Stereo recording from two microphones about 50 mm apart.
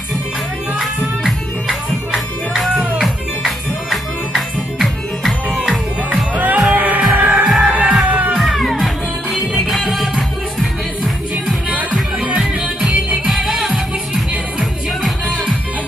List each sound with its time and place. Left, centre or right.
0.7 s music: centre
3.0 s music: centre
6.3 s music: right
7.4 s music: centre
7.7 s music: centre
8.3 s music: centre
13.3 s music: centre